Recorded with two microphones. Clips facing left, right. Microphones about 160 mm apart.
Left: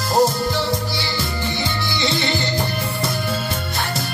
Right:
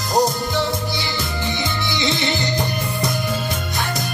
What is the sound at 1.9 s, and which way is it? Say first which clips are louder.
Music: even; 20° right (ahead or behind).